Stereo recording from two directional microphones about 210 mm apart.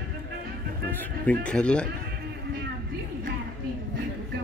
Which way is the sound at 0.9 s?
10° left (ahead or behind).